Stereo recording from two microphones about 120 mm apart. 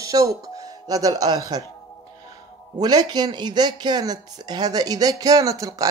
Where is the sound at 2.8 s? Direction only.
35° right (ahead or behind).